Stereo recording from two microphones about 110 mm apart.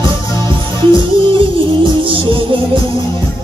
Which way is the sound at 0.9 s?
50° right (ahead or behind).